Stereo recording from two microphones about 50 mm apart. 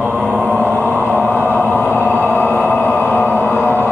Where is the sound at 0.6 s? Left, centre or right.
Left.